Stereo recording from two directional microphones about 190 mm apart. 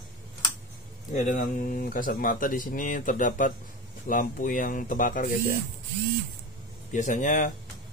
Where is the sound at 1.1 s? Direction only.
45° left (ahead or behind).